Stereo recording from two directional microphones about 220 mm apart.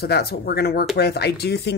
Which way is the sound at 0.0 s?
45° left (ahead or behind).